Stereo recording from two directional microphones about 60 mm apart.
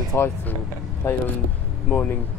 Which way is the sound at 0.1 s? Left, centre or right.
Left.